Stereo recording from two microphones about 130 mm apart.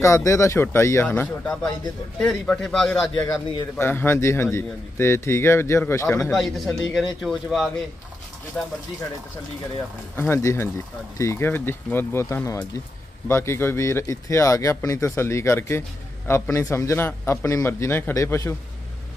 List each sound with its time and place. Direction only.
0.0 s speech: 25° left (ahead or behind); by 3.1 s 5° left (ahead or behind)
3.2 s speech: 15° left (ahead or behind)
6.3 s a man's voice: centre (ahead or behind)
10.1 s speech: 20° left (ahead or behind)